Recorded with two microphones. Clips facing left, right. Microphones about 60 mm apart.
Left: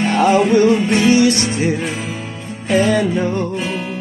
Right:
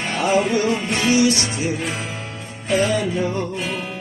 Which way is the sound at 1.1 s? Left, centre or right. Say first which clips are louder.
Left 4 dB; left.